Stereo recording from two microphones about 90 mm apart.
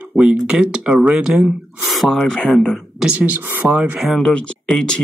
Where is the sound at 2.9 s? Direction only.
15° right (ahead or behind).